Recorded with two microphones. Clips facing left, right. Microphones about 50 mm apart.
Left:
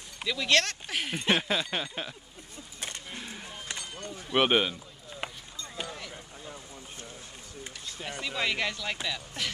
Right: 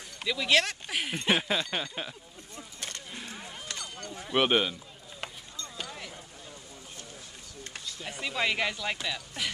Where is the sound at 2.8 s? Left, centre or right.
Left.